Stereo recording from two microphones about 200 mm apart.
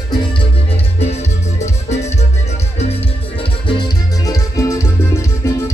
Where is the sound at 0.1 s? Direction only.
25° left (ahead or behind).